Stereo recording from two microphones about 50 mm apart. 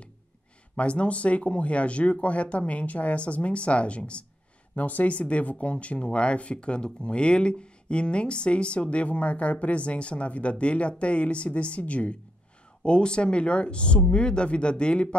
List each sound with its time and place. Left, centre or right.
0.7 s speech: left